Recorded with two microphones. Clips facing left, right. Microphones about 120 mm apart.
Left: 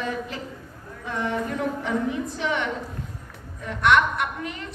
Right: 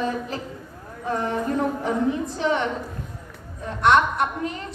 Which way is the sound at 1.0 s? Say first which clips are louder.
Right 3 dB; 35° right (ahead or behind).